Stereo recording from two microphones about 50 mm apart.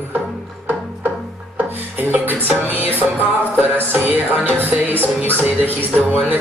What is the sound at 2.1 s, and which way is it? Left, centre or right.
Music, right.